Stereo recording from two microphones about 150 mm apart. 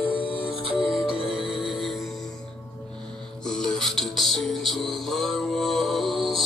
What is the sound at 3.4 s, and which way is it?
Music, 5° left (ahead or behind).